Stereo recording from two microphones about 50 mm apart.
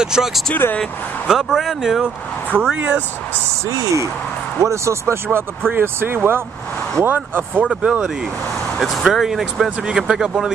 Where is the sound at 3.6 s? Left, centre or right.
Right.